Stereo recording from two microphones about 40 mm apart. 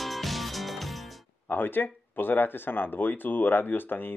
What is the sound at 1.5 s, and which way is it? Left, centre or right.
Speech, left.